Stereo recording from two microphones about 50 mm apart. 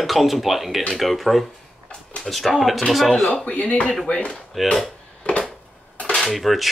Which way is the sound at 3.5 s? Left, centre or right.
Left.